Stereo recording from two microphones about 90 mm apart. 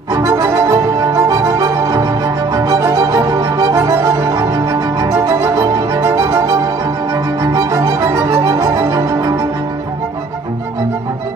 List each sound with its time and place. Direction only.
0.1 s music: 40° right (ahead or behind)